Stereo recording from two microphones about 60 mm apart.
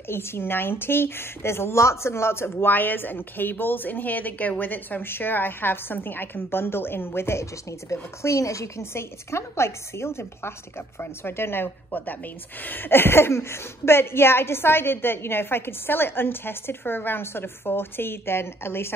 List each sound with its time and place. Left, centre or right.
0.1 s a woman's voice: left